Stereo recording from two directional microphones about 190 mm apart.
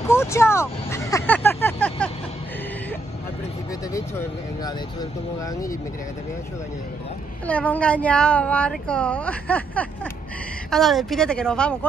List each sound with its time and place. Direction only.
0.1 s vehicle: 15° left (ahead or behind)
3.9 s speech: 15° left (ahead or behind)
7.4 s speech: 10° left (ahead or behind)